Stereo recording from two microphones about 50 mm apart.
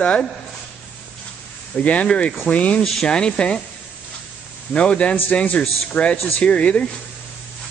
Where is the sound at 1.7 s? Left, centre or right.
Left.